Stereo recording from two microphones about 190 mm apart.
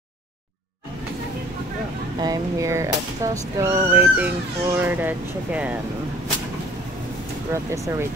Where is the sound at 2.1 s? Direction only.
20° right (ahead or behind).